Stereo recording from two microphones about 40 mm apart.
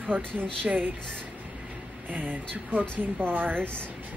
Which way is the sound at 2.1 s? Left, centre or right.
Right.